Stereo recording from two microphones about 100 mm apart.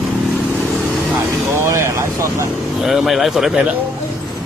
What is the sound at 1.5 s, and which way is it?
Vehicle, 30° right (ahead or behind).